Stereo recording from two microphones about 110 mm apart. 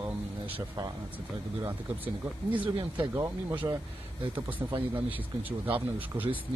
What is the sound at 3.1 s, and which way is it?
Speech, 20° right (ahead or behind).